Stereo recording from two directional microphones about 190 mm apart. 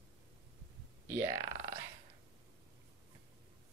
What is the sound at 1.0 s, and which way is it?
Speech, 15° right (ahead or behind).